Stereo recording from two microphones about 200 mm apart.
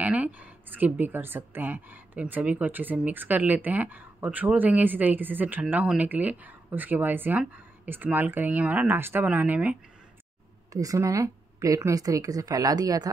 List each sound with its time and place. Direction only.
0.0 s speech: 5° right (ahead or behind)